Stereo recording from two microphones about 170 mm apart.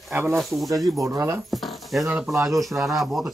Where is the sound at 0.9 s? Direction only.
20° right (ahead or behind).